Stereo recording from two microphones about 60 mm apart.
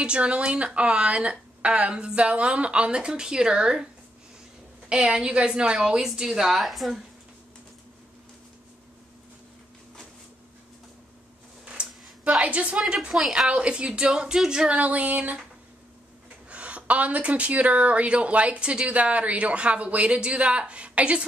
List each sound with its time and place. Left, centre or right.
0.0 s speech: centre
11.6 s a sound: centre
12.8 s speech: centre
13.5 s speech: centre
16.4 s speech: right